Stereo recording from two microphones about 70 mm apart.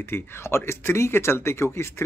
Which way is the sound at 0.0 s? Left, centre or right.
Left.